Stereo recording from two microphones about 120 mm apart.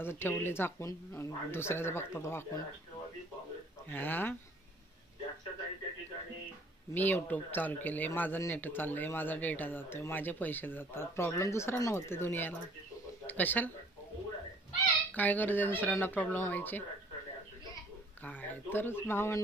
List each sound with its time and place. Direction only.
0.0 s a woman's voice: 20° left (ahead or behind)
3.9 s speech: 15° left (ahead or behind)
6.9 s speech: 15° left (ahead or behind)
14.9 s a child's voice: 15° left (ahead or behind)
18.2 s a woman's voice: 15° left (ahead or behind)